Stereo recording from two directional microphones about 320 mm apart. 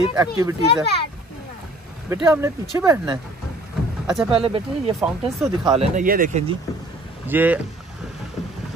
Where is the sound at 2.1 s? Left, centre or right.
Centre.